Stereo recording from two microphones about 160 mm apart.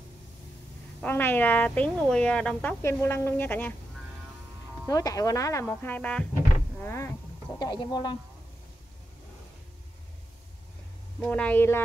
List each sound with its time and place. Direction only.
1.0 s a woman's voice: 10° left (ahead or behind)
4.8 s a woman's voice: 25° left (ahead or behind)
7.5 s speech: 25° left (ahead or behind)
11.2 s a woman's voice: 10° left (ahead or behind)